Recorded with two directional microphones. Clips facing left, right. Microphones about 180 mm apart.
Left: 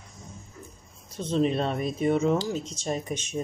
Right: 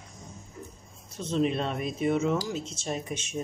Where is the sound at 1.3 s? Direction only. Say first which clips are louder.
Left 2 dB; 35° left (ahead or behind).